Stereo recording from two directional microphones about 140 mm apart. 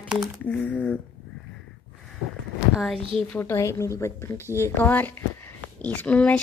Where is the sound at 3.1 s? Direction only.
10° left (ahead or behind).